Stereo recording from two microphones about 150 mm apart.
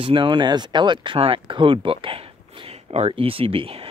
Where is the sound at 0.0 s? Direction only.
35° right (ahead or behind).